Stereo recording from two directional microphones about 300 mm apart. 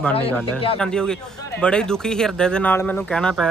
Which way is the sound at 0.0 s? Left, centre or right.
Centre.